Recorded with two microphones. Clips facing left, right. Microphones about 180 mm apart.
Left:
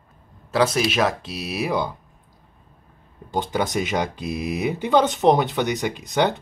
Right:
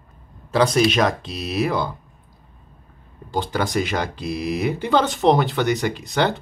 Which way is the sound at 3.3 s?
20° left (ahead or behind).